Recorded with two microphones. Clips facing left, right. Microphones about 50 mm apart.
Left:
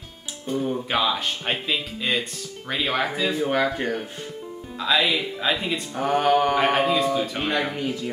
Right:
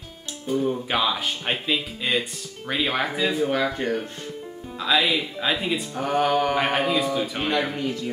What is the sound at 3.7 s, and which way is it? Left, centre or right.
Speech, centre.